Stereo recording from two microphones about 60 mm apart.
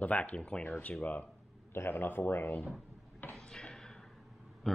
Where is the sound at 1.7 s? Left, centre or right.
Left.